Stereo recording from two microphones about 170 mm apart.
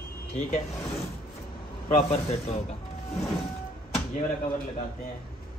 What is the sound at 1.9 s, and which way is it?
Speech, 35° left (ahead or behind).